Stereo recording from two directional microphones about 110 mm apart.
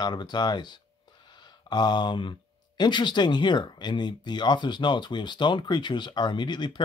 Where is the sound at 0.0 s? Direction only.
40° left (ahead or behind).